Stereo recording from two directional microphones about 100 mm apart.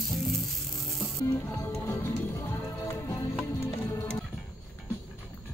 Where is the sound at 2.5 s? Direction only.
35° left (ahead or behind).